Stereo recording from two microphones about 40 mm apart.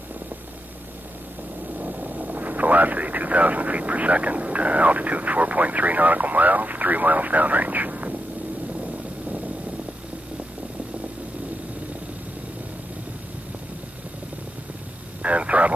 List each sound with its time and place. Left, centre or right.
1.8 s speech: right
15.2 s vehicle: right